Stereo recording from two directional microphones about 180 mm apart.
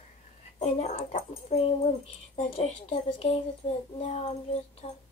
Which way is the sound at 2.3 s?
35° left (ahead or behind).